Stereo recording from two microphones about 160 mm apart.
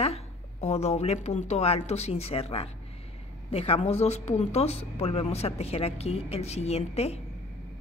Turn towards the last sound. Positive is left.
turn(degrees=40)  # may be behind; listen again after turning